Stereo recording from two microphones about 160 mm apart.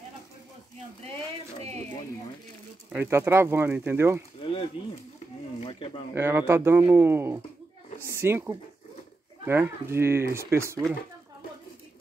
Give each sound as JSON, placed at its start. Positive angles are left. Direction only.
{"t": 2.9, "sound": "speech", "side_deg": -15}
{"t": 4.4, "sound": "a sound", "side_deg": 35}
{"t": 5.6, "sound": "speech", "side_deg": 35}
{"t": 6.1, "sound": "speech", "side_deg": -15}